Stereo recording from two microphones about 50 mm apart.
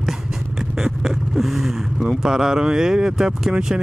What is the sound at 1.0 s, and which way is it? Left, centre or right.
Vehicle, centre.